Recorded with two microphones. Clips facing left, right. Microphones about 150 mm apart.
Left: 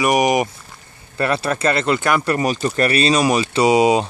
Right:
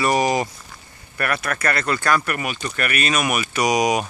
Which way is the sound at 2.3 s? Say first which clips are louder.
Left 8 dB; 35° left (ahead or behind).